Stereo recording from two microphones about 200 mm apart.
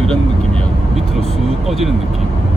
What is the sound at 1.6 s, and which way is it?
Speech, centre (ahead or behind).